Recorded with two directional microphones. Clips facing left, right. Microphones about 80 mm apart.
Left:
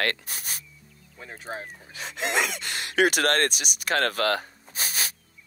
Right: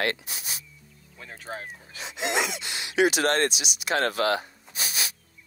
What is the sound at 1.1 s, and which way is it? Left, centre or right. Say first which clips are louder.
Speech: left 1 dB; centre.